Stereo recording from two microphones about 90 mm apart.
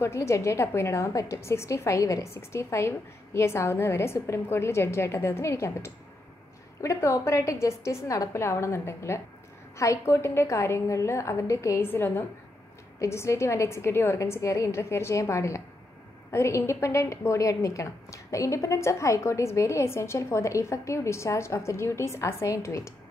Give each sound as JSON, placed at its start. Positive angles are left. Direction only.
{"t": 0.0, "sound": "a woman's voice", "side_deg": 35}